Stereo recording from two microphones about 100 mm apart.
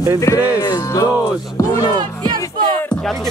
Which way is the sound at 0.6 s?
40° left (ahead or behind).